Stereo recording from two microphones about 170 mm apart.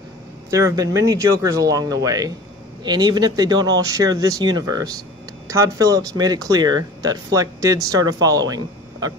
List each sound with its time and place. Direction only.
0.5 s speech: 20° right (ahead or behind)